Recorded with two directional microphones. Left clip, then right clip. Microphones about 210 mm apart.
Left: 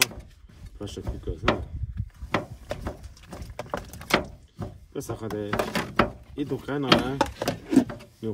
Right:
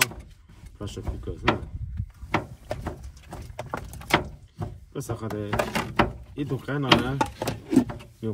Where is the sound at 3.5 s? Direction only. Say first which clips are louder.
Left 1 dB; 15° left (ahead or behind).